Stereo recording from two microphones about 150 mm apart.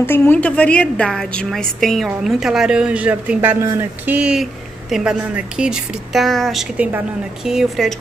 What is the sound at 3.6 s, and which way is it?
Speech, 20° right (ahead or behind).